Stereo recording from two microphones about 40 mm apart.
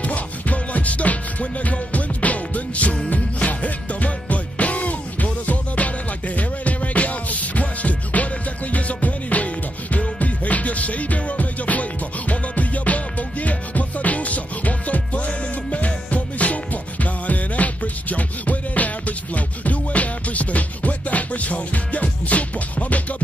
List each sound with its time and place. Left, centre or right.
0.0 s music: left